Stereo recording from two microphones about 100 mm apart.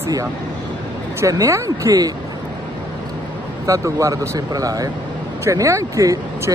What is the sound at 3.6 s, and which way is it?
Speech, 30° right (ahead or behind).